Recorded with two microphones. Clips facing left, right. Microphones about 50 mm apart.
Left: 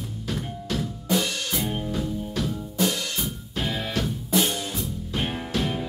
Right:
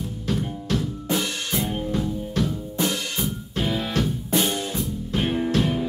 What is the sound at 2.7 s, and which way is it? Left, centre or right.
Drum kit, right.